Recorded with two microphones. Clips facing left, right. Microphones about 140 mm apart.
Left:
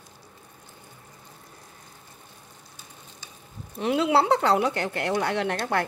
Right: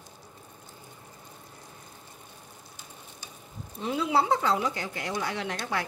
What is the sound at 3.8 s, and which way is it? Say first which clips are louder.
A woman's voice: left 5 dB; 70° left (ahead or behind).